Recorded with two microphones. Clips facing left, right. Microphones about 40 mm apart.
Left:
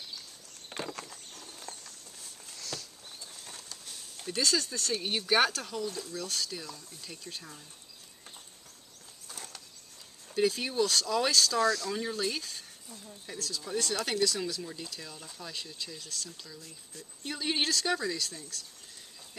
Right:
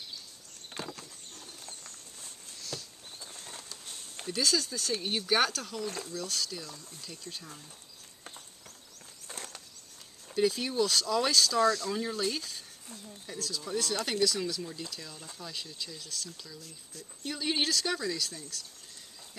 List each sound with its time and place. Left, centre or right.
0.7 s a sound: centre
2.7 s patter: centre
4.3 s speech: centre
10.3 s speech: centre
11.6 s speech: right
11.9 s speech: centre